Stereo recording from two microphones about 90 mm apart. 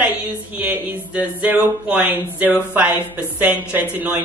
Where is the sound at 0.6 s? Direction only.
15° right (ahead or behind).